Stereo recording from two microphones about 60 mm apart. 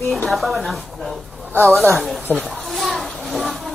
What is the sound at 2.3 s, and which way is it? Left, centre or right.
Speech, left.